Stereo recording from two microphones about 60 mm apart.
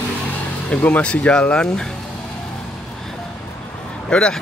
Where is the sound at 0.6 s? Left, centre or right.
Left.